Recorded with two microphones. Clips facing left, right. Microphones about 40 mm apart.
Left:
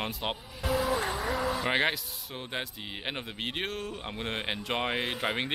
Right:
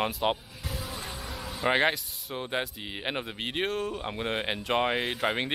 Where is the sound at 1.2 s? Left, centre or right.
Centre.